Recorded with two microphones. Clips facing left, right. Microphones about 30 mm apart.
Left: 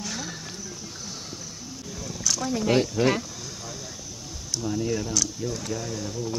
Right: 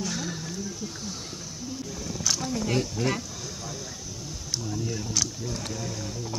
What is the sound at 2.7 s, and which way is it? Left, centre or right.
Speech, left.